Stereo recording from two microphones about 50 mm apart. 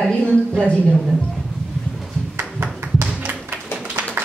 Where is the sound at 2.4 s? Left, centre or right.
Right.